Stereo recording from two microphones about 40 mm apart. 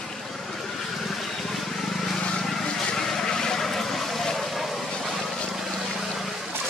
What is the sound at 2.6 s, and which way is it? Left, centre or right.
Vehicle, centre.